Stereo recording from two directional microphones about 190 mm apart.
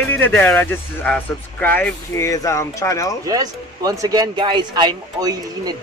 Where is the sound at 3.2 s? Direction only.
20° right (ahead or behind).